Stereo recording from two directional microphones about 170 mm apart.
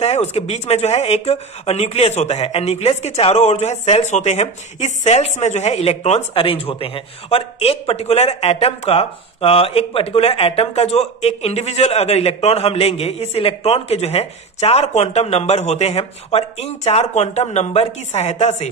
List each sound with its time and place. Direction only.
0.0 s speech: 40° left (ahead or behind)